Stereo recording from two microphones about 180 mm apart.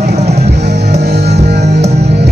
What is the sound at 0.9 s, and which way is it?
Music, 65° right (ahead or behind).